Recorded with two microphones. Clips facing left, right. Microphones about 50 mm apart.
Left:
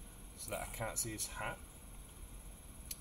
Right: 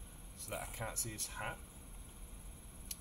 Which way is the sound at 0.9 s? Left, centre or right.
Left.